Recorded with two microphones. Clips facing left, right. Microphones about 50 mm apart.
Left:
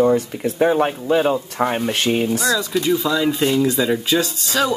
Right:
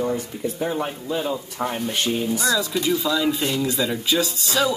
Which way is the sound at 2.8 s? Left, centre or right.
Centre.